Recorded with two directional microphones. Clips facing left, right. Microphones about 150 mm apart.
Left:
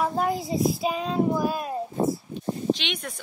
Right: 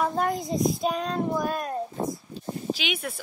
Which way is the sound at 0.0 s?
5° left (ahead or behind).